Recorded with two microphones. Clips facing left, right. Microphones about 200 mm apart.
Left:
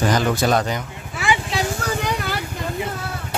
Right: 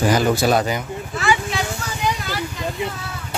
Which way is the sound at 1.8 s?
60° left (ahead or behind).